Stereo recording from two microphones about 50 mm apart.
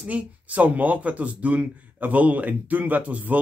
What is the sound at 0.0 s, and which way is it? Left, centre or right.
Speech, right.